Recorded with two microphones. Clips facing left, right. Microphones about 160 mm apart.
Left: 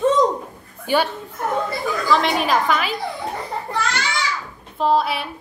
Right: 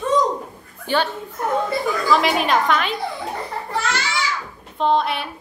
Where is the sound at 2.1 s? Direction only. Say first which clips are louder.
Even; centre (ahead or behind).